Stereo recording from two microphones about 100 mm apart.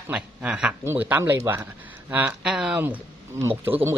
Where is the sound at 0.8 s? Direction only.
20° right (ahead or behind).